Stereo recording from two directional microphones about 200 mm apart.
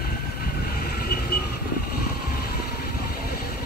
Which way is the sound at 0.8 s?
50° left (ahead or behind).